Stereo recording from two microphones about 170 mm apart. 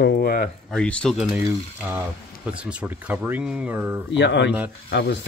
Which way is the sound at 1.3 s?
10° right (ahead or behind).